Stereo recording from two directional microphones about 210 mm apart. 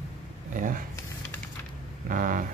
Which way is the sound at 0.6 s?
40° right (ahead or behind).